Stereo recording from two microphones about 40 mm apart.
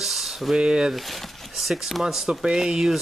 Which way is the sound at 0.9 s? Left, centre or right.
Centre.